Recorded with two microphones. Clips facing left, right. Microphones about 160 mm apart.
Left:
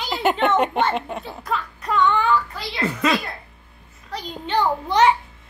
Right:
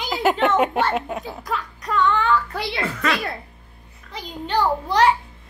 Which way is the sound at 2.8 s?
20° left (ahead or behind).